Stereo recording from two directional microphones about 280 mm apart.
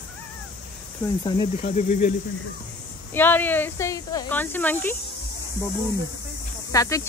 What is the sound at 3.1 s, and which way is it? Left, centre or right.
Speech, centre.